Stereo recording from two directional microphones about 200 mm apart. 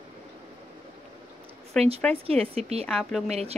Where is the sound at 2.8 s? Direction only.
5° left (ahead or behind).